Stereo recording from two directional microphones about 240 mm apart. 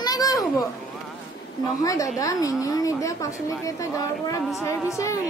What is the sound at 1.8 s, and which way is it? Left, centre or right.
Speech, centre.